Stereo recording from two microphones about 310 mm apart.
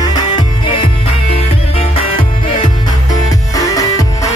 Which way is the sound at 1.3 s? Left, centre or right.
Centre.